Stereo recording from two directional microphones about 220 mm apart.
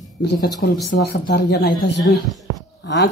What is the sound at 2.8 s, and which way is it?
Speech, 50° left (ahead or behind).